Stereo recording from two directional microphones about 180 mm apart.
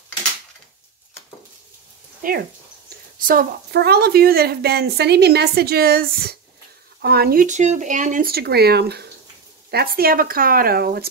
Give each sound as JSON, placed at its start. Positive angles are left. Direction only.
{"t": 2.2, "sound": "a woman's voice", "side_deg": -50}